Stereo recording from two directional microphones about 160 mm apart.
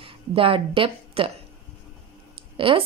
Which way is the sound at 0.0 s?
35° right (ahead or behind).